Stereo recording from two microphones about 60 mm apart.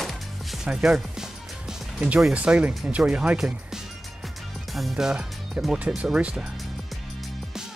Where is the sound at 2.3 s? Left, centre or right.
Right.